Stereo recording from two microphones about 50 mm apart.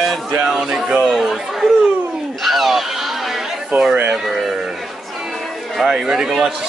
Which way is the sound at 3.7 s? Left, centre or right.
Right.